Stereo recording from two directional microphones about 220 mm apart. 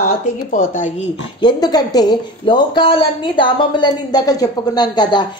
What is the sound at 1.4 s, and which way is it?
Speech, 20° left (ahead or behind).